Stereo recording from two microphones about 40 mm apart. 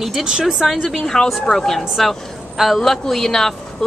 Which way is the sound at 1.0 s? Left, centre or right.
Centre.